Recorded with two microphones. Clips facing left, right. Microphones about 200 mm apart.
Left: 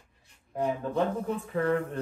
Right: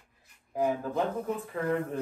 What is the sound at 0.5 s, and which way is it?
Speech, centre (ahead or behind).